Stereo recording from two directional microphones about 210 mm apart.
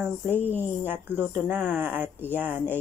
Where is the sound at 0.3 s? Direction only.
10° left (ahead or behind).